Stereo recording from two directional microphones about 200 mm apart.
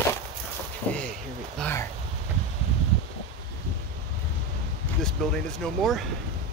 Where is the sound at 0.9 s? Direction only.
5° left (ahead or behind).